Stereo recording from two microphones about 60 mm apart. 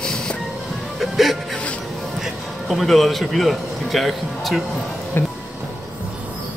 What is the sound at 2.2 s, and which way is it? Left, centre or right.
Speech, centre.